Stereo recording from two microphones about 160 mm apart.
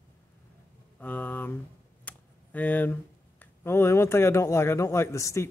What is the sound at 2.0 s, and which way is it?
Computer keyboard, 10° left (ahead or behind).